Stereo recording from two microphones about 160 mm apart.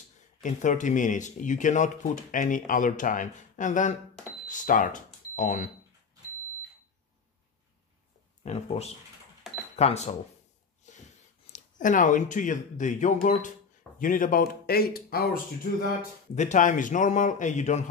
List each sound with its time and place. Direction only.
0.4 s speech: 50° left (ahead or behind)
8.5 s speech: 40° left (ahead or behind)
9.5 s cash register: centre (ahead or behind)
9.8 s speech: 45° left (ahead or behind)
10.8 s a sound: 50° left (ahead or behind)
11.5 s speech: 55° left (ahead or behind); by 15.3 s 70° left (ahead or behind)
16.3 s speech: 50° left (ahead or behind)